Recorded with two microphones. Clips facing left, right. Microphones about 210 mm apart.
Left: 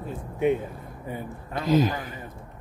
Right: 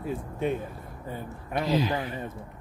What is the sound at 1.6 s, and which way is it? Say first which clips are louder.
Speech: left 3 dB; 50° left (ahead or behind).